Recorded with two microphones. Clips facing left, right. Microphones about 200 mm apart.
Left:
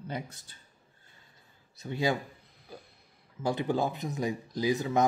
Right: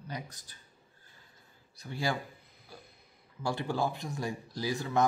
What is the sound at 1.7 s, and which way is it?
Speech, 20° left (ahead or behind).